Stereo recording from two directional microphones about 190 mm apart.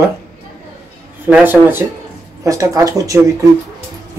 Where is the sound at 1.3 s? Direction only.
10° right (ahead or behind).